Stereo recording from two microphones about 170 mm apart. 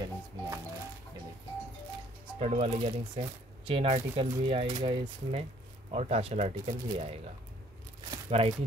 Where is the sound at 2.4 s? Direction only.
40° right (ahead or behind).